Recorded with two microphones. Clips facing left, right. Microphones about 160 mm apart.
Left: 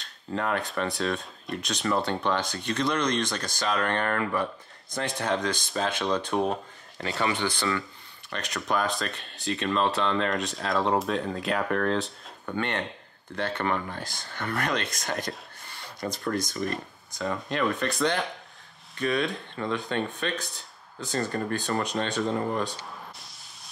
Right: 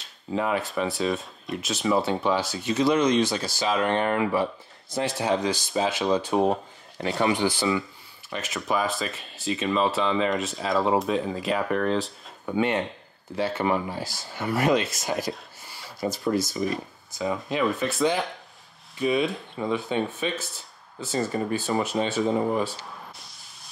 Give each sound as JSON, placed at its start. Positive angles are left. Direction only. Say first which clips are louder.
{"t": 0.0, "sound": "speech", "louder": "right 3 dB", "side_deg": -5}
{"t": 7.2, "sound": "speech", "louder": "right 4 dB", "side_deg": -20}
{"t": 7.4, "sound": "speech", "louder": "right 4 dB", "side_deg": -5}